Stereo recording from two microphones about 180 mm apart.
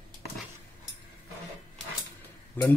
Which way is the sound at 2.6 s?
10° left (ahead or behind).